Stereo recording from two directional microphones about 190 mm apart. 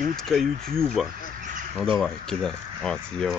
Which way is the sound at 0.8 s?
5° left (ahead or behind).